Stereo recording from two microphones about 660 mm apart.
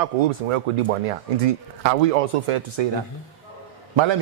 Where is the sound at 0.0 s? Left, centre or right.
Right.